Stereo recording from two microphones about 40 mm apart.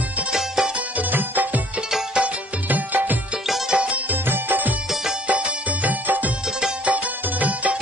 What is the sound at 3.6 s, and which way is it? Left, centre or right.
Music, right.